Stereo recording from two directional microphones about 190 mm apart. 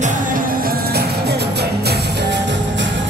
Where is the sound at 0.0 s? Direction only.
45° right (ahead or behind).